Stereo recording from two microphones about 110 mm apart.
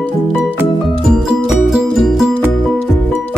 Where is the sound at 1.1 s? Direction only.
5° right (ahead or behind).